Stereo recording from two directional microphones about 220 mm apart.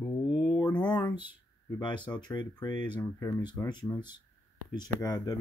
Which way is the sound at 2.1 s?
20° left (ahead or behind).